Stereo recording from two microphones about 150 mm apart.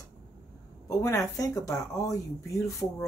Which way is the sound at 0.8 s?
20° left (ahead or behind).